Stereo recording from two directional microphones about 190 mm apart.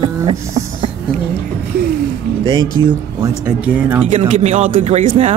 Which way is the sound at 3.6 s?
5° right (ahead or behind).